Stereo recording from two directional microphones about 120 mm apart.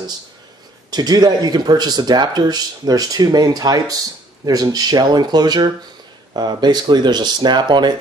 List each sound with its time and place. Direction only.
0.8 s speech: 35° right (ahead or behind)